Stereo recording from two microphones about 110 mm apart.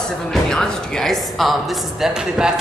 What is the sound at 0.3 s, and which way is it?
A woman's voice, 5° left (ahead or behind).